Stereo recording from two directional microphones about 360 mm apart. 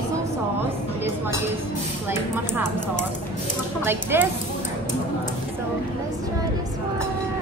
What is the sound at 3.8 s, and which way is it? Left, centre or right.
Speech, centre.